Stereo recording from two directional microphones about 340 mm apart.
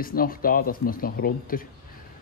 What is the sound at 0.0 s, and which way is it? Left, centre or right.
Speech, left.